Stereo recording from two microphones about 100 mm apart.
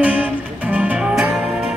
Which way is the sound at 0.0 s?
15° right (ahead or behind).